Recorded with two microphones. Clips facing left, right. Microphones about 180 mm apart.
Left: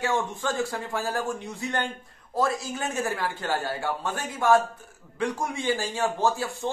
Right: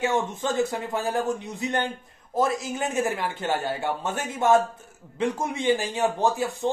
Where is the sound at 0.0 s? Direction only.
20° right (ahead or behind).